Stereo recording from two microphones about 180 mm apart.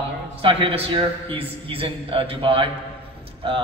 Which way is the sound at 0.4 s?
30° right (ahead or behind).